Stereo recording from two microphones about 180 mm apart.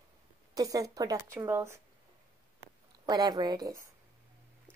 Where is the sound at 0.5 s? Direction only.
20° right (ahead or behind).